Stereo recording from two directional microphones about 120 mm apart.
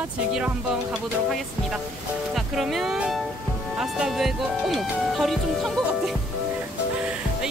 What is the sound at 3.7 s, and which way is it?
Speech, 5° right (ahead or behind).